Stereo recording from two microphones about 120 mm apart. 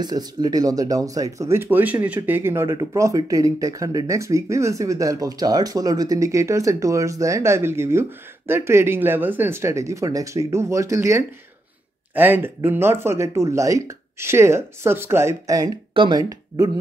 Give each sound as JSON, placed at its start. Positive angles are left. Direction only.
{"t": 0.0, "sound": "speech", "side_deg": -35}
{"t": 15.9, "sound": "speech", "side_deg": -40}